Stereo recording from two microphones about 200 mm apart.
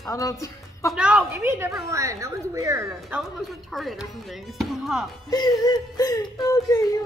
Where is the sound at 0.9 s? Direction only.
5° right (ahead or behind).